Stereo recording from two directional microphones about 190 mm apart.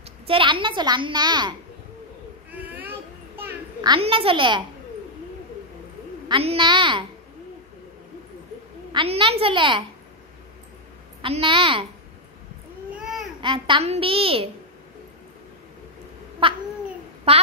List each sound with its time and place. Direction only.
0.3 s a woman's voice: 25° right (ahead or behind)
2.5 s a sound: 10° right (ahead or behind)
3.8 s a woman's voice: 25° right (ahead or behind)
6.2 s a woman's voice: 25° right (ahead or behind)
8.9 s a woman's voice: 30° right (ahead or behind)
11.2 s a woman's voice: 30° right (ahead or behind)
12.9 s babbling: 5° right (ahead or behind)
13.4 s a woman's voice: 25° right (ahead or behind)
16.4 s a woman's voice: 25° right (ahead or behind)